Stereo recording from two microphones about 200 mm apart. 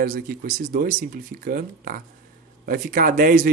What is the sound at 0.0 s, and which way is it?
Speech, 45° right (ahead or behind).